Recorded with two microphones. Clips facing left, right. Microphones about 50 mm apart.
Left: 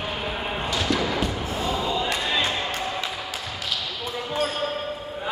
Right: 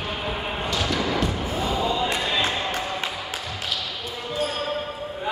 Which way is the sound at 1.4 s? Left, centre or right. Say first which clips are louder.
Right 2 dB; right.